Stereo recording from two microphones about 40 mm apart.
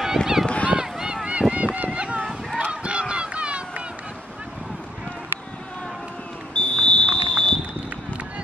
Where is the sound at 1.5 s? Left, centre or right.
Right.